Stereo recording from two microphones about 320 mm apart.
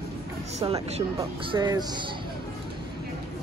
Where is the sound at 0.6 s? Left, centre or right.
Centre.